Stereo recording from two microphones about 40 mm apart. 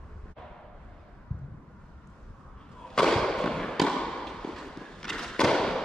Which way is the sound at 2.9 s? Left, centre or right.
Centre.